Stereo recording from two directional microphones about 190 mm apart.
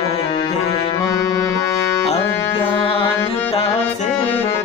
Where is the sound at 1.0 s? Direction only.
15° left (ahead or behind).